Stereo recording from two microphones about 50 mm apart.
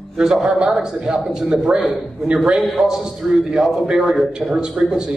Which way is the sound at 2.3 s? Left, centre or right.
Centre.